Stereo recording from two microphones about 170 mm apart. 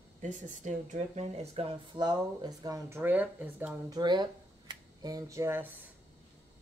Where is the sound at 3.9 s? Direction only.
25° right (ahead or behind).